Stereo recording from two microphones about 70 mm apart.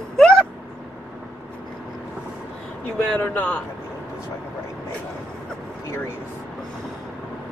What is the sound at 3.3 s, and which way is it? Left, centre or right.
Speech, centre.